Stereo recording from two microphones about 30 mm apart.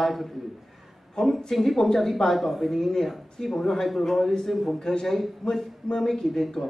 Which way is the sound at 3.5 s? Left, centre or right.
Centre.